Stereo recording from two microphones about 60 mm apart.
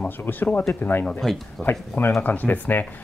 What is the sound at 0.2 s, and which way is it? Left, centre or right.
Speech, left.